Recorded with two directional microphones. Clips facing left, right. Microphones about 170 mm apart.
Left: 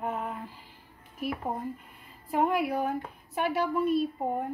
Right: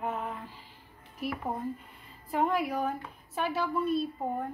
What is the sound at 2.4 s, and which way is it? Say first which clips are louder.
Speech: left 2 dB; 10° left (ahead or behind).